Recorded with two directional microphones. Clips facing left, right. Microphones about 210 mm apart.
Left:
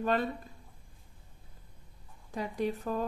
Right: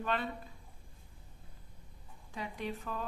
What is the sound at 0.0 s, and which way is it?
Speech, 40° left (ahead or behind).